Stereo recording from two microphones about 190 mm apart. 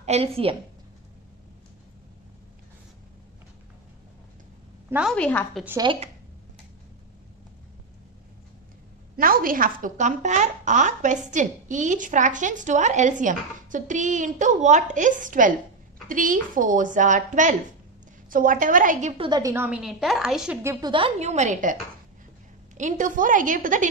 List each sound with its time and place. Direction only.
0.0 s speech: 35° right (ahead or behind)
5.1 s a woman's voice: 5° left (ahead or behind)
5.8 s speech: 25° right (ahead or behind)
9.1 s speech: 50° right (ahead or behind)
19.2 s a woman's voice: 20° right (ahead or behind); by 20.5 s 5° right (ahead or behind)
20.6 s speech: 25° right (ahead or behind); by 21.7 s 40° right (ahead or behind)
22.8 s speech: 40° right (ahead or behind)